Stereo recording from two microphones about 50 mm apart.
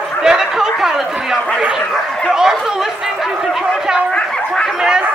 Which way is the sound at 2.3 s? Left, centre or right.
Centre.